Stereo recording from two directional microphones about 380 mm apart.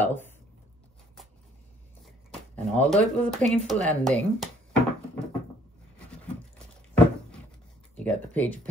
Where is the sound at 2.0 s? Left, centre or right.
Centre.